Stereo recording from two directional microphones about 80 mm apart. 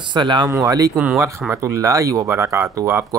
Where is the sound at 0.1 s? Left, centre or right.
Right.